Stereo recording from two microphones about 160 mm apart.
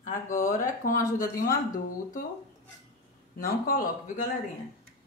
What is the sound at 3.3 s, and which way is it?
Speech, 65° left (ahead or behind).